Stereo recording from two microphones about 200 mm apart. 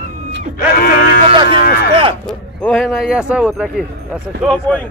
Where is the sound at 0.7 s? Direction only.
50° left (ahead or behind).